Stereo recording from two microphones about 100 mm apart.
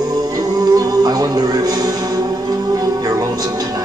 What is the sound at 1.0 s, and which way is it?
Music, 40° right (ahead or behind).